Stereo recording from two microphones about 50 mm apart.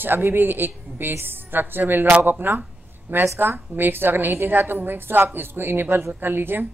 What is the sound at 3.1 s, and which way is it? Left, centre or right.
Speech, right.